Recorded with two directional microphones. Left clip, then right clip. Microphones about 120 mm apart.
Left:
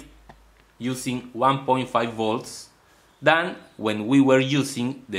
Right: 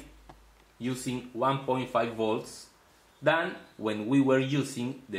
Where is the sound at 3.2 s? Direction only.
40° left (ahead or behind).